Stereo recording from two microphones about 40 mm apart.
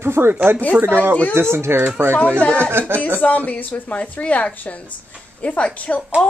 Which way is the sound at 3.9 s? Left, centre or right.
Left.